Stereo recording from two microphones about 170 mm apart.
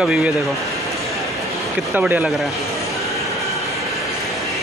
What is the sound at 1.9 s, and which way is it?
Speech, 10° right (ahead or behind).